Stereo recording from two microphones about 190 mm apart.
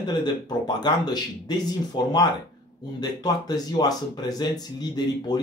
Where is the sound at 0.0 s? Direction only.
20° left (ahead or behind).